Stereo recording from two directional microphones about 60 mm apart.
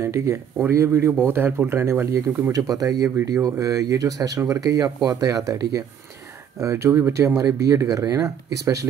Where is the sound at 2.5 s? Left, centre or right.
Right.